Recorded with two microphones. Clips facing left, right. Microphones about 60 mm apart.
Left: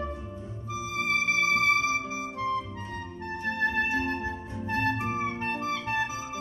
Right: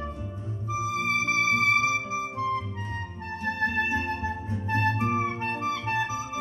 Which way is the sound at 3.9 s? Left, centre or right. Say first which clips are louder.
Right 1 dB; right.